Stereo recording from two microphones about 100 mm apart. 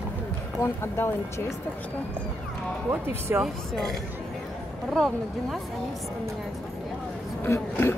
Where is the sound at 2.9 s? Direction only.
25° right (ahead or behind).